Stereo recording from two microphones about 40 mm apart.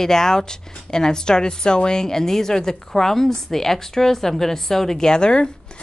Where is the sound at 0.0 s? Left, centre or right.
Centre.